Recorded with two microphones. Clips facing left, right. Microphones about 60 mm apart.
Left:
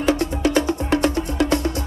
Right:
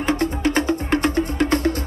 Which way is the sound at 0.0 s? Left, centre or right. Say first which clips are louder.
Left 1 dB; right.